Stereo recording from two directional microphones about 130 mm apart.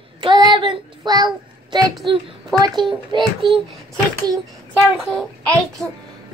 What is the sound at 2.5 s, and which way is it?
Speech, 30° right (ahead or behind).